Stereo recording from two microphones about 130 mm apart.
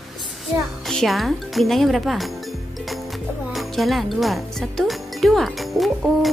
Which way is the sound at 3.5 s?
Centre (ahead or behind).